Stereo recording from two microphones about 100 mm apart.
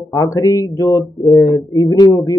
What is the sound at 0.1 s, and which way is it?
Speech, 35° left (ahead or behind).